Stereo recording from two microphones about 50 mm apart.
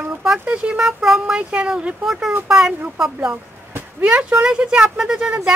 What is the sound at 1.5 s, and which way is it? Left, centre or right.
Speech, right.